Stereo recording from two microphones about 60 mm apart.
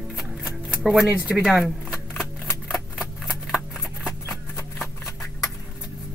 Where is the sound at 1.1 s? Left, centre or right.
Right.